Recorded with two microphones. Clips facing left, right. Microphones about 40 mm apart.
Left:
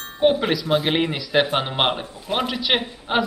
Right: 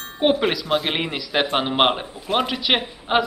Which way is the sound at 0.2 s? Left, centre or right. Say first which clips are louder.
Left 1 dB; right.